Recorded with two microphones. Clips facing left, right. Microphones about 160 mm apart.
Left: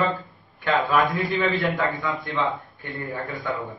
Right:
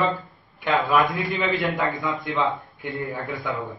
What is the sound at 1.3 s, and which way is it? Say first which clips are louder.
Speech: left 1 dB; 20° right (ahead or behind).